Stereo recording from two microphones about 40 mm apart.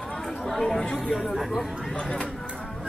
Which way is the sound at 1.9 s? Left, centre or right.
Left.